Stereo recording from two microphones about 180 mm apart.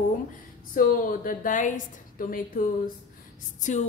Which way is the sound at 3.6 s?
40° left (ahead or behind).